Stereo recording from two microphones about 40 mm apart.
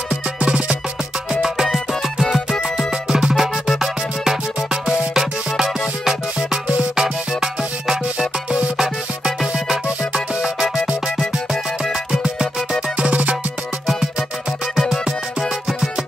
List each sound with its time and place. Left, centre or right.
0.5 s music: right
1.3 s music: centre
2.9 s music: centre
12.1 s music: centre
12.9 s music: right